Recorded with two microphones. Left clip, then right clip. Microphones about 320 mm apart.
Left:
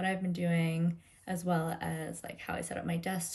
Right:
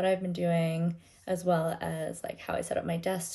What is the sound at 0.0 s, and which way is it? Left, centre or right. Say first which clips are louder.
Speech: right 6 dB; centre.